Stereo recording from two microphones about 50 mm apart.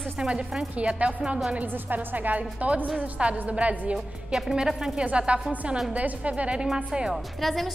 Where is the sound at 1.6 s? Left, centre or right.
Right.